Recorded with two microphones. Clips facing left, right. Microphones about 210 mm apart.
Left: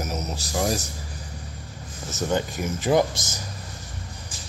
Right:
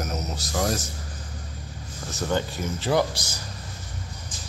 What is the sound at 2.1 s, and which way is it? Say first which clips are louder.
Speech: left 1 dB; 15° left (ahead or behind).